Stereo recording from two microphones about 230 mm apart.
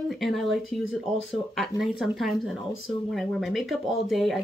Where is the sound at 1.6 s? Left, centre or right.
Centre.